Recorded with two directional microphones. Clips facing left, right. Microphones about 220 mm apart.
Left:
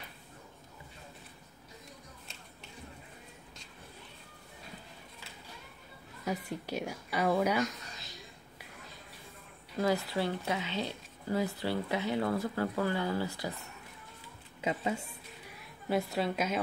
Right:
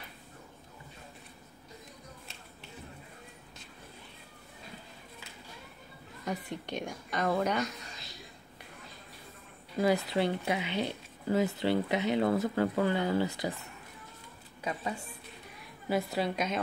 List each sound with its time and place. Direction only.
6.2 s a woman's voice: 5° left (ahead or behind)
9.8 s speech: 15° right (ahead or behind)
14.6 s a woman's voice: 20° left (ahead or behind)
15.9 s a woman's voice: centre (ahead or behind)